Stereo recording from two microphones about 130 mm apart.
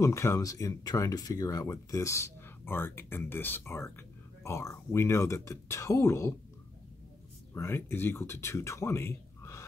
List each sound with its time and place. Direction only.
0.0 s speech: 20° left (ahead or behind)
7.5 s speech: 20° left (ahead or behind)